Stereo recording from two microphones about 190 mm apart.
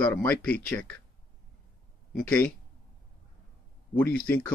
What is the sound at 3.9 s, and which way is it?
Speech, 10° left (ahead or behind).